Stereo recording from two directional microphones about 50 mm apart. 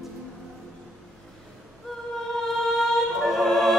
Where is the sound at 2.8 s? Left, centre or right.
Centre.